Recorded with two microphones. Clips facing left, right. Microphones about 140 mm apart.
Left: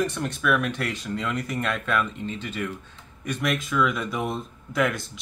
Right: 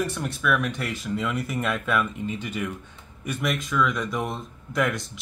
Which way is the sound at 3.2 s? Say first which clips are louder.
Left 1 dB; 5° right (ahead or behind).